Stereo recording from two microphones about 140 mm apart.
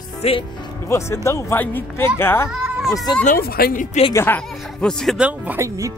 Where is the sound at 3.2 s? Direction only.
90° left.